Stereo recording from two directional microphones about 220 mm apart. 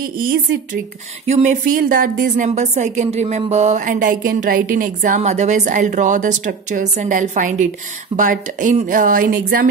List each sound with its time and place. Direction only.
1.2 s speech: 30° right (ahead or behind)